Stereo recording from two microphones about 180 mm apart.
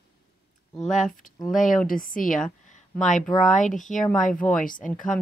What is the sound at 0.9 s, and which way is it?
Speech, 45° left (ahead or behind).